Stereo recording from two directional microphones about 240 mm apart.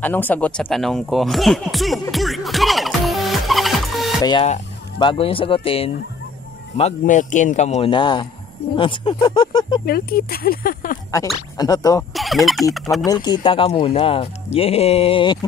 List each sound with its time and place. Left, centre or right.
0.0 s a sound: centre
4.2 s speech: left
9.8 s speech: left
11.5 s speech: centre
12.1 s speech: centre
13.0 s speech: centre